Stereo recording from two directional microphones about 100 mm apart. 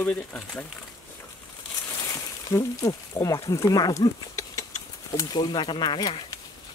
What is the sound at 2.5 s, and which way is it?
Speech, 35° left (ahead or behind).